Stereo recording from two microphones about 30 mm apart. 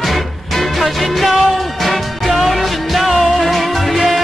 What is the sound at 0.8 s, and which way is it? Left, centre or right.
Music, centre.